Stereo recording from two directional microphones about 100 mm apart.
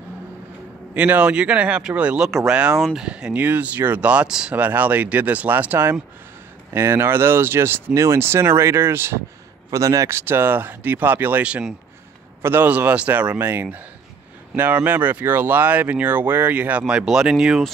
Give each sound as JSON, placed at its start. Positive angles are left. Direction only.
{"t": 0.9, "sound": "speech", "side_deg": -15}